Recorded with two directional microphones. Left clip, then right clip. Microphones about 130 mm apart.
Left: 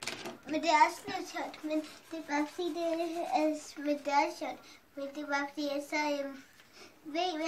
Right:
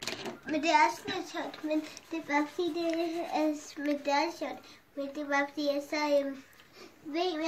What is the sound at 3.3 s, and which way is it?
Speech, 10° right (ahead or behind).